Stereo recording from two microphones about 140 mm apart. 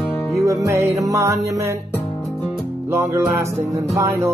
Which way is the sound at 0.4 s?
20° right (ahead or behind).